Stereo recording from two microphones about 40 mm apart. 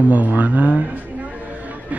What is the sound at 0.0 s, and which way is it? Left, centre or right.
Speech, right.